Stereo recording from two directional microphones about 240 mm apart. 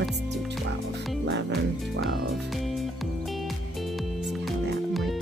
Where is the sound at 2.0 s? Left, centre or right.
Centre.